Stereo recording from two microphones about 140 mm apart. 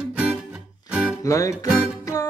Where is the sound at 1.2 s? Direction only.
25° left (ahead or behind).